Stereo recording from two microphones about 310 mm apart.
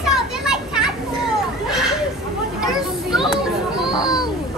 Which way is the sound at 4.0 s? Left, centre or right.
Centre.